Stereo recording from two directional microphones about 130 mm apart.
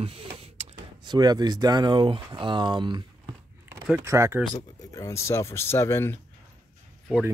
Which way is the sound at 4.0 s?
20° right (ahead or behind).